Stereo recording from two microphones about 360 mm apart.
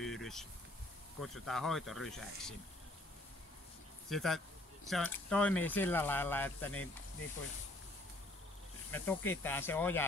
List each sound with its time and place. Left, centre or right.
0.0 s a sound: centre
1.2 s speech: centre
4.1 s speech: centre
8.9 s speech: centre